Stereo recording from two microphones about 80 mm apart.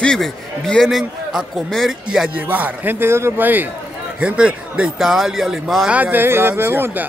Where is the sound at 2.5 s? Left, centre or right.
Right.